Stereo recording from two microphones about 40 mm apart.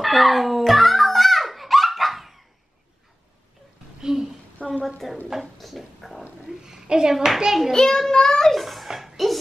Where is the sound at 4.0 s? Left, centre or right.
Centre.